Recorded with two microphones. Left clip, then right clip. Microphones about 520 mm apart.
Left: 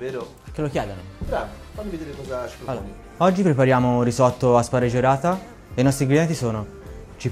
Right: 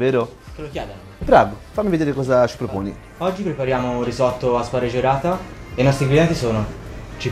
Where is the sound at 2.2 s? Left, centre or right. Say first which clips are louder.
Right 14 dB; right.